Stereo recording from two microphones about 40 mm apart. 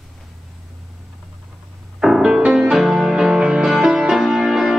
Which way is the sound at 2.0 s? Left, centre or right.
Centre.